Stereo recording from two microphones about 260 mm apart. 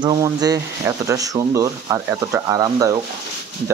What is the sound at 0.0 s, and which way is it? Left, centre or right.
Speech, centre.